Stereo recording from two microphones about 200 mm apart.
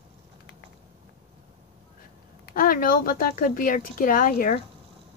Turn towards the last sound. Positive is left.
turn(degrees=45)  # may be behind; listen again after turning